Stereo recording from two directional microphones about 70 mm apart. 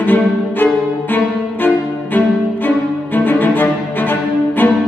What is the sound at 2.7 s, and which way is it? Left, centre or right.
Cello, left.